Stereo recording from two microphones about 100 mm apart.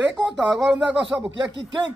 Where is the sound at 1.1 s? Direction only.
25° right (ahead or behind).